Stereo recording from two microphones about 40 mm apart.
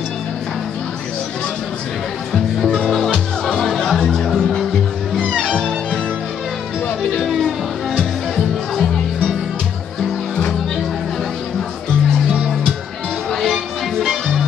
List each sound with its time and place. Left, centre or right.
3.1 s music: centre
13.3 s music: centre